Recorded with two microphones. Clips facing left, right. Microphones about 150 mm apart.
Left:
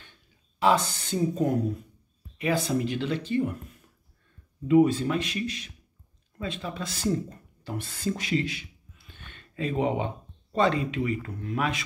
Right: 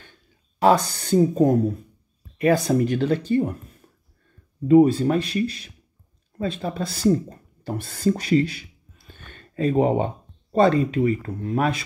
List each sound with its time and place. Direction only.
0.6 s speech: 40° right (ahead or behind)